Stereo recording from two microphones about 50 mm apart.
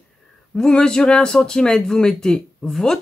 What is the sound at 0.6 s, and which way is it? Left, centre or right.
Speech, centre.